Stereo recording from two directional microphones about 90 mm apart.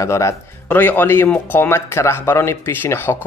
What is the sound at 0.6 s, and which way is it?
Speech, 20° left (ahead or behind).